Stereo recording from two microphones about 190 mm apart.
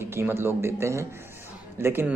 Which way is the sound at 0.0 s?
15° right (ahead or behind).